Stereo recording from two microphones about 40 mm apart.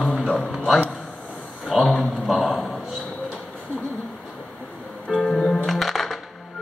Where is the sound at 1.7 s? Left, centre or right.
Centre.